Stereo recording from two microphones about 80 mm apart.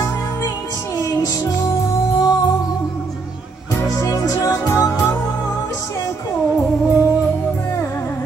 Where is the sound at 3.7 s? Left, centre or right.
Left.